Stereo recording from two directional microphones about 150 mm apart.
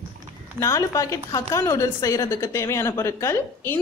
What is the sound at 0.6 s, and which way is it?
A woman's voice, 20° left (ahead or behind).